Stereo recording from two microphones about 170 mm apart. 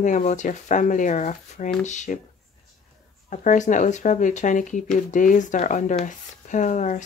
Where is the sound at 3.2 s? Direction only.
45° left (ahead or behind).